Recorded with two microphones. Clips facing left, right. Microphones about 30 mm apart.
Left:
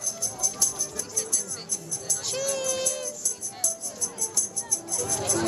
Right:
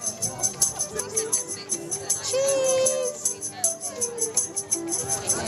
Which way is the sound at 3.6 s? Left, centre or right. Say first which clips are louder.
Right 3 dB; right.